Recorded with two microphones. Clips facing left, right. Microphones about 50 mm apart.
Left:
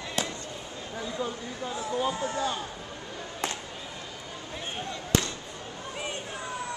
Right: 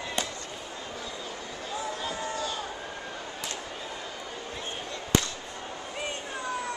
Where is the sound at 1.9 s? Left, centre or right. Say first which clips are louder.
Left 4 dB; centre.